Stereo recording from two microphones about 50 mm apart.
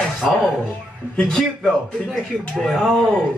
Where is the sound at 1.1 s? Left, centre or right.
Centre.